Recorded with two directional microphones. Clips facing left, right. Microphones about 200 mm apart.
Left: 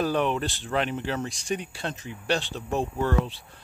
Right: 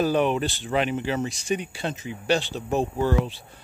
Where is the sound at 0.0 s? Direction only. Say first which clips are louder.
Right 3 dB; 5° right (ahead or behind).